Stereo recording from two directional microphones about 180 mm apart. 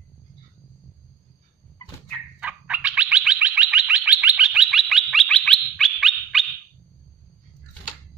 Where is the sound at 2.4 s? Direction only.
10° right (ahead or behind).